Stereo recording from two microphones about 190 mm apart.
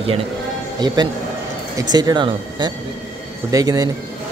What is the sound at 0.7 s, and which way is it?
Speech, 20° right (ahead or behind).